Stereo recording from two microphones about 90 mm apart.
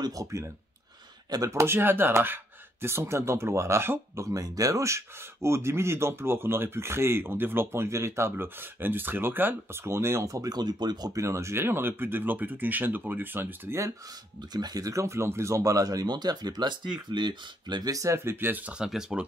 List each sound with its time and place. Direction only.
0.0 s speech: 40° right (ahead or behind)
4.3 s speech: 40° right (ahead or behind)
11.2 s speech: 30° right (ahead or behind)
14.5 s speech: 50° right (ahead or behind); by 18.6 s 25° right (ahead or behind)
18.7 s speech: 5° right (ahead or behind)